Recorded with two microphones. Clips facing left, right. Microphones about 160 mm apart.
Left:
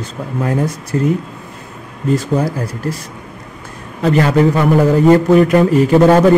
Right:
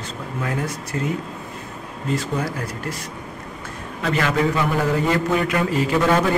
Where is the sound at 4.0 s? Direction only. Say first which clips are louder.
Left 8 dB; 35° left (ahead or behind).